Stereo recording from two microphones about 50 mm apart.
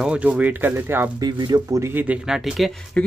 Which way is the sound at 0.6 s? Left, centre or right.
Right.